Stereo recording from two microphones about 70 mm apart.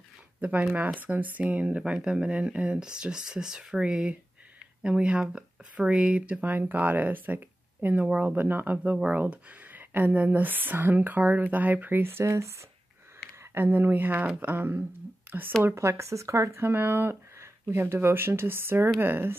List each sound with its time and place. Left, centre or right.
0.4 s speech: right
13.4 s speech: right
15.6 s speech: right